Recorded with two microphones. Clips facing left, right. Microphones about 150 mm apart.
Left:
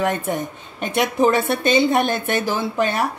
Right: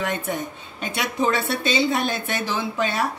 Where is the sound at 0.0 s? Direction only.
50° left (ahead or behind).